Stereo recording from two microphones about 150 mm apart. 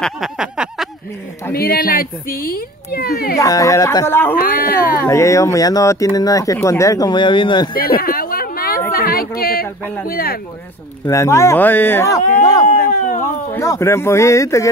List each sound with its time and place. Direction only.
0.0 s a sound: centre (ahead or behind)
1.5 s speech: 85° left
3.3 s speech: 20° left (ahead or behind)
4.4 s speech: 75° left (ahead or behind)
5.0 s speech: 20° left (ahead or behind)
7.7 s a sound: 80° left
10.0 s speech: 85° left
11.1 s speech: 20° left (ahead or behind)
12.6 s speech: 60° left (ahead or behind)
13.2 s speech: 20° left (ahead or behind)